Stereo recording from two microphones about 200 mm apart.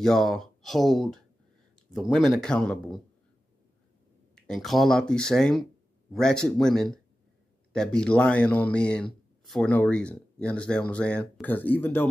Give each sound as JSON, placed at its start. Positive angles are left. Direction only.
{"t": 0.0, "sound": "speech", "side_deg": 0}
{"t": 4.4, "sound": "speech", "side_deg": 0}